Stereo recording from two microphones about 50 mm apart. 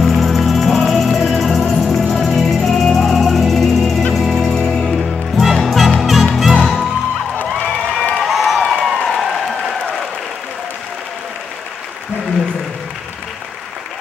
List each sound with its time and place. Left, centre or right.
0.0 s music: centre
7.5 s cheering: left
8.2 s a sound: centre